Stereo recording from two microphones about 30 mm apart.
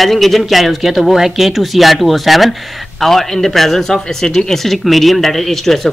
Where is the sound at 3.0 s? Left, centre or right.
Centre.